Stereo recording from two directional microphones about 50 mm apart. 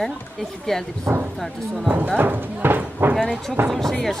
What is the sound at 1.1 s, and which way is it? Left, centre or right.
Speech, centre.